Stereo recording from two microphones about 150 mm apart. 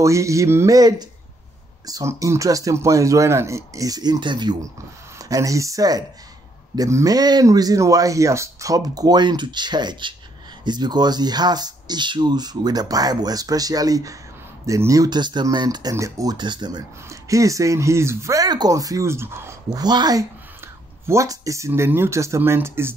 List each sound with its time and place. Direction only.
0.0 s speech: 20° right (ahead or behind)